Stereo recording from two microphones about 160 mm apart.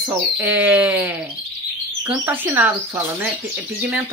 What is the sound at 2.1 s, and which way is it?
Speech, 10° right (ahead or behind).